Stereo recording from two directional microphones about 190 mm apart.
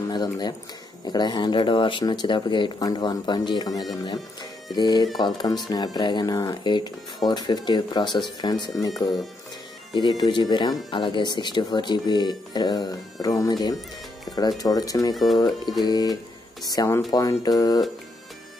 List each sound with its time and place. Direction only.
0.1 s speech: 20° left (ahead or behind)
9.9 s speech: 20° left (ahead or behind)